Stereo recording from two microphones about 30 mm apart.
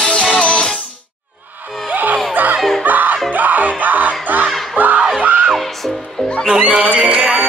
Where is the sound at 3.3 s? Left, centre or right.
Right.